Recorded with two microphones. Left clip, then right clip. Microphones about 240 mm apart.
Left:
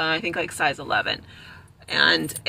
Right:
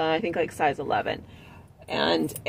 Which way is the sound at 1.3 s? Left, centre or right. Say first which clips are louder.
Left 5 dB; centre.